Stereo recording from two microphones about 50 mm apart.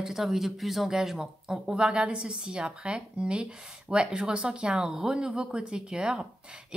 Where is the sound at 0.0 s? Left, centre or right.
Centre.